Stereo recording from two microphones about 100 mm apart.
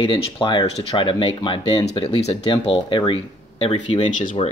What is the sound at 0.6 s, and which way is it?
Speech, 75° left (ahead or behind).